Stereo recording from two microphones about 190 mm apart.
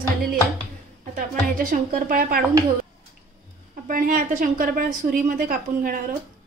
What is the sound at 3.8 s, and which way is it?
A woman's voice, 45° right (ahead or behind).